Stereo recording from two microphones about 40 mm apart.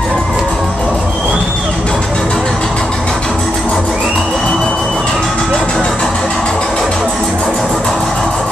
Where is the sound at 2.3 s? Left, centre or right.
Centre.